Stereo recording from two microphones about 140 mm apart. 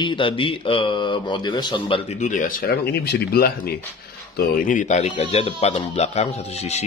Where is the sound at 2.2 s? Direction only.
70° left (ahead or behind); by 3.8 s 90° left.